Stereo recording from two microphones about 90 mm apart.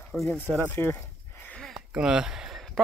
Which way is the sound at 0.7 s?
20° left (ahead or behind).